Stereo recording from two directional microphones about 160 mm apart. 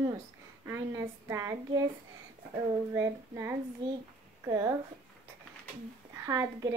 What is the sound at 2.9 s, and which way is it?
Child singing, 15° right (ahead or behind).